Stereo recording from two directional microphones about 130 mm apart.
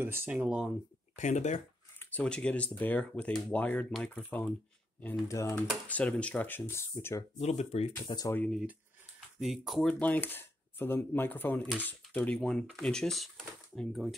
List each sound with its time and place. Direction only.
0.0 s speech: 15° right (ahead or behind)
1.1 s speech: 65° left (ahead or behind)
2.0 s speech: 10° left (ahead or behind)
5.3 s speech: 25° left (ahead or behind)
5.9 s speech: 10° left (ahead or behind)
7.3 s speech: 55° left (ahead or behind)
7.9 s speech: 30° left (ahead or behind)
9.4 s speech: centre (ahead or behind)
9.8 s speech: 10° left (ahead or behind)